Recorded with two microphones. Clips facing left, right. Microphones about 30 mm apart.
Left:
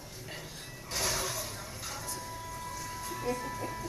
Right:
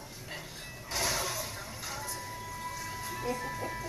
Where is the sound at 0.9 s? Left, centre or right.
Centre.